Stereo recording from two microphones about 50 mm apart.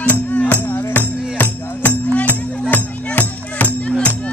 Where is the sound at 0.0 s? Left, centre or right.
Left.